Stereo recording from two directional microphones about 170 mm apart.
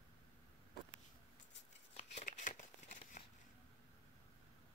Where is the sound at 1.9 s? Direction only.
40° left (ahead or behind).